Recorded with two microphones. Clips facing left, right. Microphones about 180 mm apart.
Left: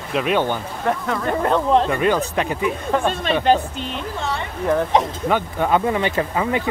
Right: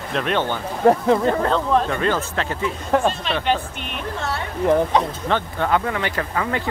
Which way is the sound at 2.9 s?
Centre (ahead or behind).